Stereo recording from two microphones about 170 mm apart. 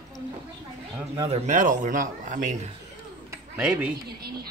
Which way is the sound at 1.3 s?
40° right (ahead or behind).